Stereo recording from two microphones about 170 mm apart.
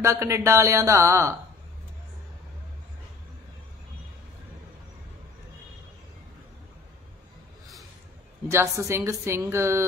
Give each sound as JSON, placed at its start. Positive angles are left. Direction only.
{"t": 0.0, "sound": "a woman's voice", "side_deg": -15}
{"t": 8.5, "sound": "a woman's voice", "side_deg": -15}